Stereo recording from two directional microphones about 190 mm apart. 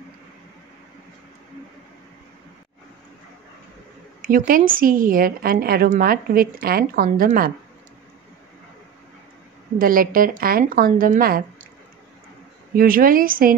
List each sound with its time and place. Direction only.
4.2 s a woman's voice: 45° right (ahead or behind)
9.8 s a woman's voice: 50° right (ahead or behind)
12.7 s a woman's voice: 50° right (ahead or behind)